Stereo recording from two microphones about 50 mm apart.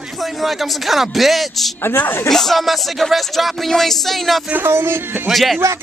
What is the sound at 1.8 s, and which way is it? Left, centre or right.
Speech, left.